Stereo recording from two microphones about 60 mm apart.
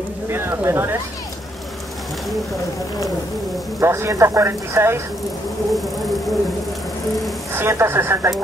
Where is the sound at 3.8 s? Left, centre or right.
Right.